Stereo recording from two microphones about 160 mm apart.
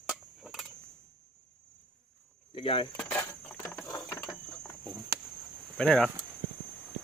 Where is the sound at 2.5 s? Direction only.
30° left (ahead or behind).